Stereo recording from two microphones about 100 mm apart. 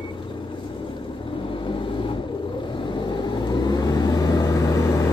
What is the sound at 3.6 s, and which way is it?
Vehicle, 45° left (ahead or behind).